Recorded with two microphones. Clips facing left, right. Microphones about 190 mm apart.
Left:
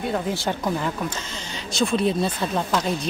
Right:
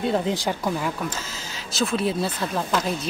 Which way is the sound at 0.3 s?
15° right (ahead or behind).